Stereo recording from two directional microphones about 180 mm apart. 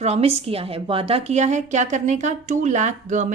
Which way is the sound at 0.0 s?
35° right (ahead or behind).